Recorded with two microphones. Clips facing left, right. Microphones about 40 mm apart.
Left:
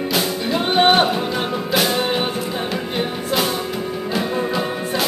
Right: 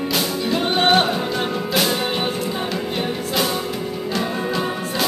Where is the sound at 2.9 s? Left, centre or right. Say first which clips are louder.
Left 2 dB; centre.